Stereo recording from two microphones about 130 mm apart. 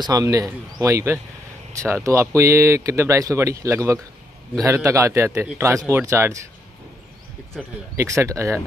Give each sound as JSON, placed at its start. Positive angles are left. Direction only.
{"t": 0.0, "sound": "speech", "side_deg": -30}
{"t": 7.9, "sound": "speech", "side_deg": -20}